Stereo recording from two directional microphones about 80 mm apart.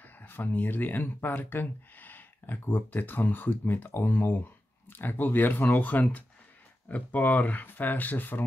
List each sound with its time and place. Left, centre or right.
0.0 s speech: left